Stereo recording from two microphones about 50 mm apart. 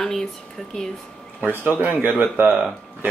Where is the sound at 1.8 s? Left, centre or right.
Right.